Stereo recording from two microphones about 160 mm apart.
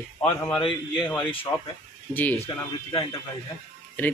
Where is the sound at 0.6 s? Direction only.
30° left (ahead or behind).